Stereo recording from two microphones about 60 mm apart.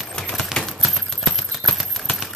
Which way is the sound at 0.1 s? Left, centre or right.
Centre.